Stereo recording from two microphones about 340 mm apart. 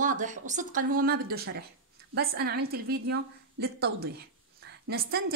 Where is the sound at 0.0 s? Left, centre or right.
Right.